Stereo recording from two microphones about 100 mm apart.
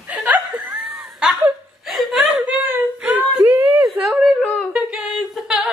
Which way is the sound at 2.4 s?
20° right (ahead or behind).